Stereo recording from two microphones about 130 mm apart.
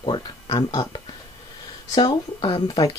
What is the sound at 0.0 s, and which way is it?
Speech, 40° left (ahead or behind).